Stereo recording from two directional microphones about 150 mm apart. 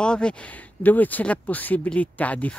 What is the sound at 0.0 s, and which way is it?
Speech, 5° left (ahead or behind).